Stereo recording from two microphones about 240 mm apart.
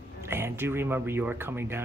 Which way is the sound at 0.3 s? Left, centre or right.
Centre.